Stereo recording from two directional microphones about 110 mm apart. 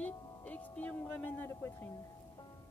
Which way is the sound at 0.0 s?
15° left (ahead or behind).